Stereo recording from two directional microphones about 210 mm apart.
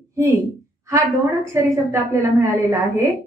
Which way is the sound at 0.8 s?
15° right (ahead or behind).